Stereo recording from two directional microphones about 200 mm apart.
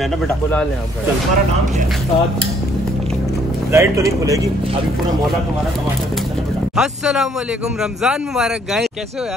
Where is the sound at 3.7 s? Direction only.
15° right (ahead or behind).